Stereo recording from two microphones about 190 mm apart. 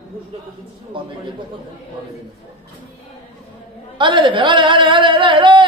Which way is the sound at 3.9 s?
25° right (ahead or behind).